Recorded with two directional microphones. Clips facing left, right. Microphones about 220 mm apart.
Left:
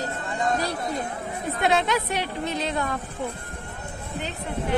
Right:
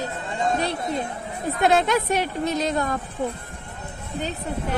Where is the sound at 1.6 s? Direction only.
40° right (ahead or behind).